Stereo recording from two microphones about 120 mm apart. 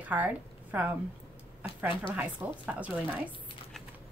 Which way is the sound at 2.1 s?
10° right (ahead or behind).